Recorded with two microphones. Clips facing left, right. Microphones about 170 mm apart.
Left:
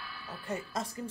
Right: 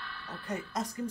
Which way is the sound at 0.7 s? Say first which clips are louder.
Right 2 dB; 30° left (ahead or behind).